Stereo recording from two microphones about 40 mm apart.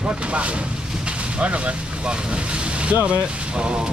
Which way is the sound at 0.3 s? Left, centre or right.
Right.